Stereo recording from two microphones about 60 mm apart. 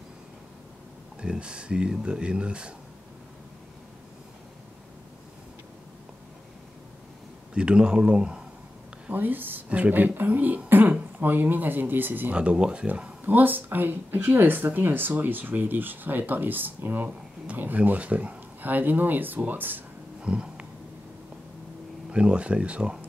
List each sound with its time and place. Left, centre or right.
1.2 s speech: centre
7.5 s speech: centre
9.1 s speech: right
12.4 s speech: centre
20.2 s a sound: centre
22.1 s speech: centre